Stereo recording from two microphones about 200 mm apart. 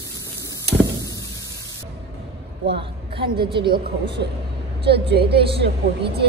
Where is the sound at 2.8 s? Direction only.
25° right (ahead or behind).